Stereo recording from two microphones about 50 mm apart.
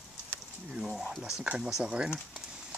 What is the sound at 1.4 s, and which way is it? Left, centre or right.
Speech, centre.